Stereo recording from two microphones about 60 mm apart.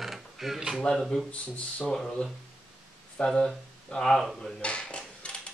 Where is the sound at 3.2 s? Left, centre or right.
Centre.